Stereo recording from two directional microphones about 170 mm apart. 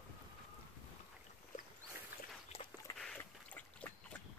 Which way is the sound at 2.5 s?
35° left (ahead or behind).